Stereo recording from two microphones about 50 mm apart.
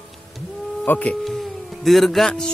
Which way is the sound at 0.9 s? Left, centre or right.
Left.